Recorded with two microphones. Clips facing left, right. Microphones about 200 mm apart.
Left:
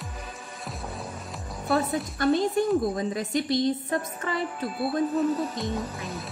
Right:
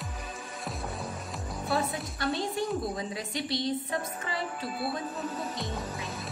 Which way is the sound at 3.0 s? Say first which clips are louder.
Left 7 dB; 45° left (ahead or behind).